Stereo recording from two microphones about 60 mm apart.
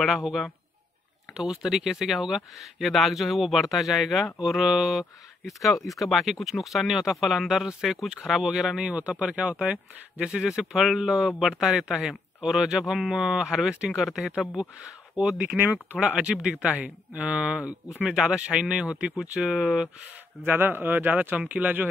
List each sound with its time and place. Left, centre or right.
0.2 s speech: centre
8.8 s speech: right
15.6 s speech: right
16.0 s speech: centre
20.4 s speech: right